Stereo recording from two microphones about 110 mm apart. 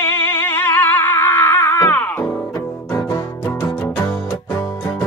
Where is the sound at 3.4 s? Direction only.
15° left (ahead or behind).